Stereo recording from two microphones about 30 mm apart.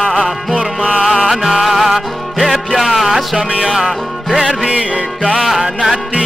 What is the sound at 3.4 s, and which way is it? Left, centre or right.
Music, right.